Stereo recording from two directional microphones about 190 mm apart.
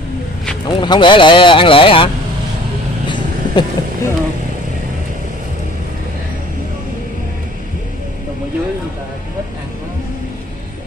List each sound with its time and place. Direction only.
0.7 s speech: 25° left (ahead or behind)
3.1 s vehicle: 20° left (ahead or behind)